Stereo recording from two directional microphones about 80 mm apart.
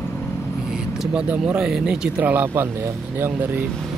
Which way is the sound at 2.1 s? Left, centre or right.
Right.